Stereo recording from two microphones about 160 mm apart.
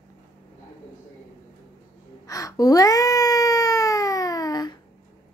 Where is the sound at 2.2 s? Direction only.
20° left (ahead or behind).